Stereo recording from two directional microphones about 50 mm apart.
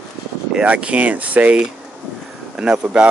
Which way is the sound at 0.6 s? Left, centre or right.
Right.